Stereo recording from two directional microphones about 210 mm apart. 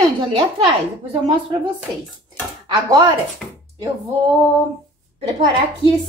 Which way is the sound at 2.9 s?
15° right (ahead or behind).